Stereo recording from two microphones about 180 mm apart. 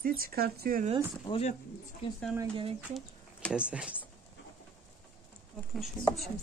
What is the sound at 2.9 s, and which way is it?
Speech, centre (ahead or behind).